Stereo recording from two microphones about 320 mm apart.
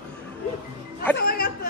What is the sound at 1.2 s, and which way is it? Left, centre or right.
Chatter, left.